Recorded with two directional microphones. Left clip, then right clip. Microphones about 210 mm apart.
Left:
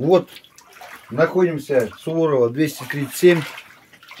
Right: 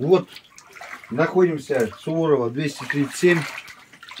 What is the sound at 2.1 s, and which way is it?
Speech, 55° left (ahead or behind).